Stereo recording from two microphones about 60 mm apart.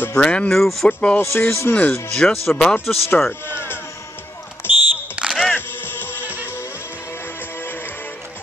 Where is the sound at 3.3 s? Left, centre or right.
Left.